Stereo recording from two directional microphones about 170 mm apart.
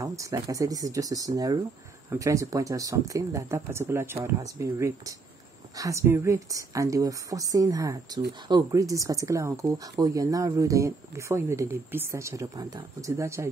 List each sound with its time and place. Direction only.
0.0 s speech: 20° right (ahead or behind)